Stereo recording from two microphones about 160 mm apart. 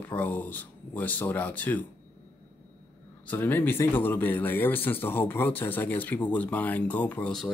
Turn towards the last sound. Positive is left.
turn(degrees=5)  # may be behind; listen again after turning